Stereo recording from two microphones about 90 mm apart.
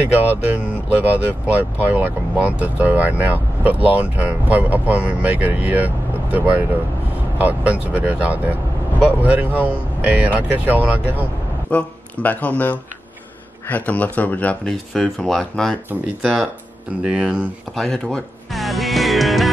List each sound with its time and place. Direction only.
0.0 s speech: 20° right (ahead or behind)
11.7 s speech: 15° left (ahead or behind)
14.7 s speech: 5° left (ahead or behind)
16.2 s speech: 5° right (ahead or behind)
17.7 s speech: 5° left (ahead or behind)